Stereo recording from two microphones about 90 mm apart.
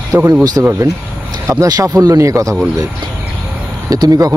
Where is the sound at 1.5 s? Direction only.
40° right (ahead or behind).